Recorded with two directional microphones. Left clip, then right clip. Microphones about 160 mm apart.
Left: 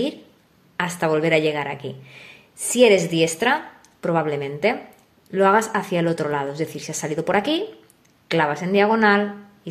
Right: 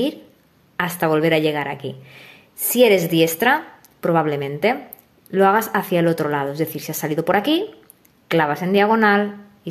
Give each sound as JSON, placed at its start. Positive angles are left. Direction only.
{"t": 0.7, "sound": "a woman's voice", "side_deg": -20}